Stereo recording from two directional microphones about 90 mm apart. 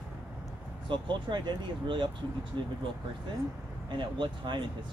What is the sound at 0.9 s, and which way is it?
Speech, 60° right (ahead or behind).